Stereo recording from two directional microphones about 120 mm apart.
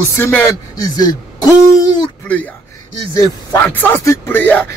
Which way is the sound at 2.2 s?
15° left (ahead or behind).